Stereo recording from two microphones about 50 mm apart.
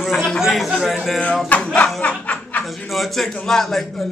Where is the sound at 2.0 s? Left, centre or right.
Left.